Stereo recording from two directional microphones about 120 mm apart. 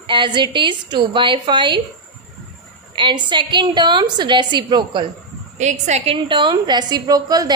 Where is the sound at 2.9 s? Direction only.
40° right (ahead or behind).